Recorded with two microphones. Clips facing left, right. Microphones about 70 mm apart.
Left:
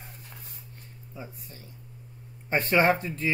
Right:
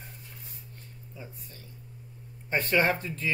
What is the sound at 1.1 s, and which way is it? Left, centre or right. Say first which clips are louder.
Speech: left 4 dB; left.